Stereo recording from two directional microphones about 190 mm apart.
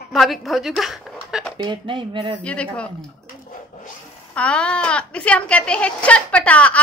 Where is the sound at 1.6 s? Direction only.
25° right (ahead or behind).